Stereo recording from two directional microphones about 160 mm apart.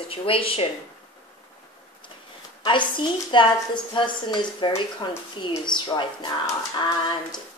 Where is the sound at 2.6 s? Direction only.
30° left (ahead or behind).